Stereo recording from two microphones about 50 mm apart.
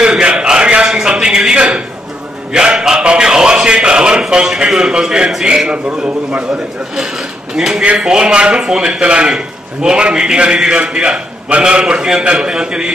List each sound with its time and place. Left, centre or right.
0.0 s a sound: centre
3.0 s music: centre
4.3 s a man's voice: centre
7.5 s a man's voice: centre